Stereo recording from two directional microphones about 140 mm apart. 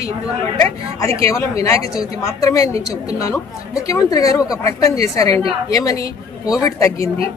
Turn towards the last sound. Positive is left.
turn(degrees=25)  # may be behind; listen again after turning